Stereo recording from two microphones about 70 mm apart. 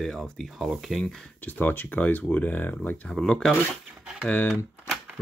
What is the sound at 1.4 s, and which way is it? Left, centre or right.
Speech, left.